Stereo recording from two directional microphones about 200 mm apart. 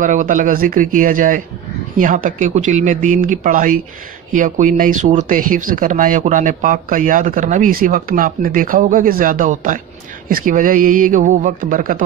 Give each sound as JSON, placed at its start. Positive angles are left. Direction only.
{"t": 0.0, "sound": "speech", "side_deg": -40}